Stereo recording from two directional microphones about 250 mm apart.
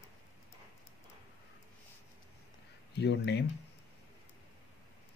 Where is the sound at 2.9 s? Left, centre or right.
Left.